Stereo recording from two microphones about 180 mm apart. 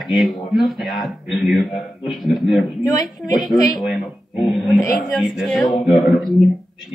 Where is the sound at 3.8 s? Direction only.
Centre (ahead or behind).